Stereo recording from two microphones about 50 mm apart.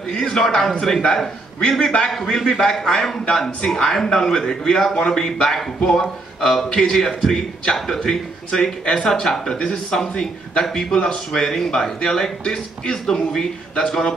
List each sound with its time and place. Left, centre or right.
0.1 s a man's voice: centre
2.1 s a man's voice: centre